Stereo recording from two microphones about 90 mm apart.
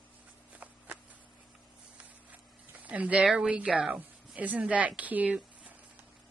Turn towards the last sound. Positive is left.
turn(degrees=-15)  # may be behind; listen again after turning